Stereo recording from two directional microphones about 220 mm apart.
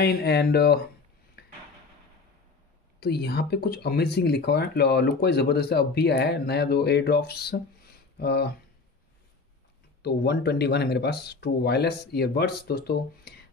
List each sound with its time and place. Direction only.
0.0 s speech: 45° left (ahead or behind)
1.4 s drawer open or close: 45° left (ahead or behind)
3.0 s speech: 45° left (ahead or behind)
10.0 s speech: 45° left (ahead or behind)